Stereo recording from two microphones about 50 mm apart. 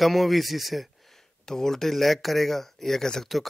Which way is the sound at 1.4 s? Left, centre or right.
Centre.